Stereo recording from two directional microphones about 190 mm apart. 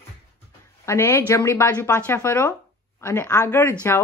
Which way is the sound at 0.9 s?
15° left (ahead or behind).